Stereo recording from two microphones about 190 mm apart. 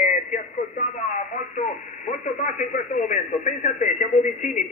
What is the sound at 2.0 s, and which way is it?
A man's voice, 40° left (ahead or behind).